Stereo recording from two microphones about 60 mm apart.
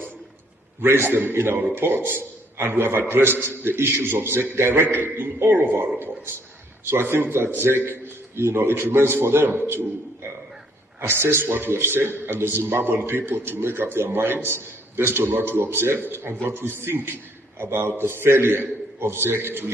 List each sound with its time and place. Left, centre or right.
0.7 s a man's voice: right
6.9 s a man's voice: right
11.0 s a man's voice: right